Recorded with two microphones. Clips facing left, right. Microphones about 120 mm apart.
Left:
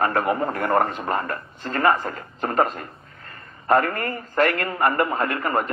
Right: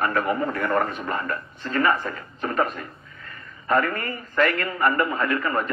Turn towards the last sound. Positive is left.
turn(degrees=30)  # may be behind; listen again after turning